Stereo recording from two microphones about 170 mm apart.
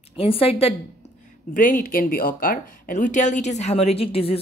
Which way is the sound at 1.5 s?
50° left (ahead or behind).